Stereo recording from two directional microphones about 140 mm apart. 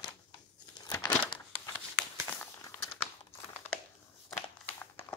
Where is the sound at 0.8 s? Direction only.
30° left (ahead or behind).